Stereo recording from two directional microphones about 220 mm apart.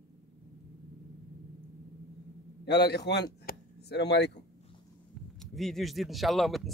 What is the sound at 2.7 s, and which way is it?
Speech, 50° left (ahead or behind).